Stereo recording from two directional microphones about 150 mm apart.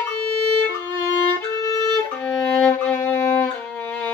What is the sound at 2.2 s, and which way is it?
Violin, 10° left (ahead or behind).